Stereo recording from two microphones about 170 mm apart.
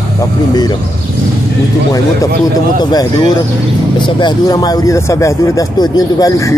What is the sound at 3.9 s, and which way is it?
Speech, 25° left (ahead or behind).